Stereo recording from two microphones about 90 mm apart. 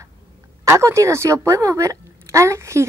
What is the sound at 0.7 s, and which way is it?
A woman's voice, 35° right (ahead or behind).